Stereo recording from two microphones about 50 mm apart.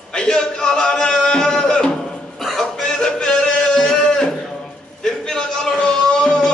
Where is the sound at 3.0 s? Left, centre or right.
Centre.